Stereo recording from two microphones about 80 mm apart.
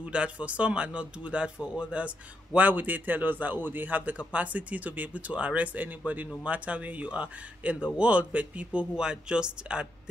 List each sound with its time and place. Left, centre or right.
0.0 s speech: centre